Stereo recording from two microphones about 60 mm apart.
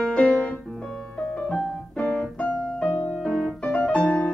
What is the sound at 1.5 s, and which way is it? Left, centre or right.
Piano, centre.